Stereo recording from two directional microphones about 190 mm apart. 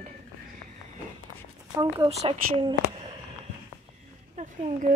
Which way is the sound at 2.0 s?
30° right (ahead or behind).